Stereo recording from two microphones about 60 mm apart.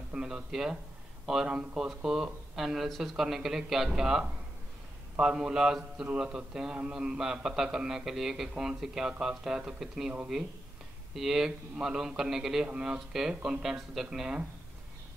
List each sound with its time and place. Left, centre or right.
0.1 s a man's voice: centre
1.5 s speech: centre
2.0 s a man's voice: centre
11.1 s a man's voice: centre
12.6 s a man's voice: centre